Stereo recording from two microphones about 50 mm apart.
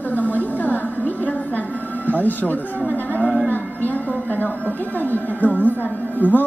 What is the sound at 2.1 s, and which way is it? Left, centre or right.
Speech, left.